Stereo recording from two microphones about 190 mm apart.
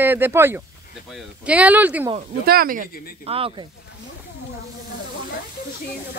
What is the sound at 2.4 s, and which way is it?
Speech, 50° right (ahead or behind).